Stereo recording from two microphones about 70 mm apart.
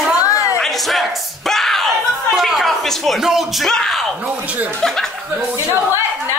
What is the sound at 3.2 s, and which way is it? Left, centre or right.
Speech, centre.